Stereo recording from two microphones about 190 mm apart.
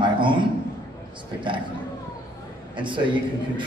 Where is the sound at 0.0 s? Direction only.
25° right (ahead or behind).